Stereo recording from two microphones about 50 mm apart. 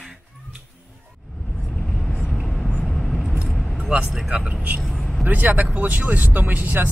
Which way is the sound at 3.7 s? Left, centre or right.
Right.